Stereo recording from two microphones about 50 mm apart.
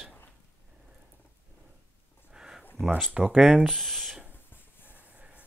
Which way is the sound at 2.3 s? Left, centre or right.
Centre.